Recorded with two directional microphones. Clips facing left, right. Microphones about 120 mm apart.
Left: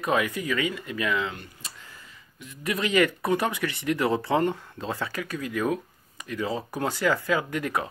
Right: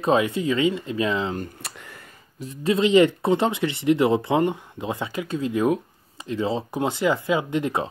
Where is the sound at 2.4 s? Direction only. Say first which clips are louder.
Right 8 dB; 30° right (ahead or behind).